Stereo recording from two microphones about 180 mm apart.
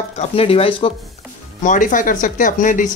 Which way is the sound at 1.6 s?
45° left (ahead or behind).